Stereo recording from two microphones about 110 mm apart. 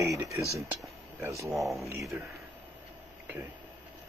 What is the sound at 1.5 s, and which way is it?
Speech, centre (ahead or behind).